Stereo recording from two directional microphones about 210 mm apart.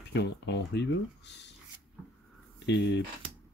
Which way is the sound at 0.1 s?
55° left (ahead or behind).